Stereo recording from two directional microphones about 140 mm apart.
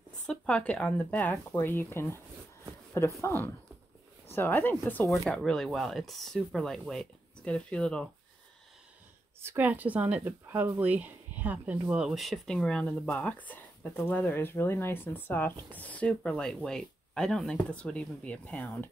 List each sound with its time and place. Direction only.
0.3 s speech: 10° left (ahead or behind)
5.1 s speech: 5° left (ahead or behind)
9.4 s speech: 15° right (ahead or behind); by 18.9 s 15° left (ahead or behind)